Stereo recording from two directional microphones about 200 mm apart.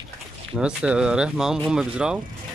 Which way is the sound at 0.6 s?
5° right (ahead or behind).